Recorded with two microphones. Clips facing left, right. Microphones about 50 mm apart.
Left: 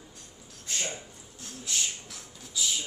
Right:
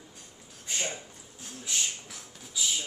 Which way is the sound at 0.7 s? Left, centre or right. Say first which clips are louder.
Right 1 dB; centre.